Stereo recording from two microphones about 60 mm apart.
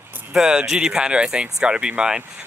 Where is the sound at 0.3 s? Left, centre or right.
Centre.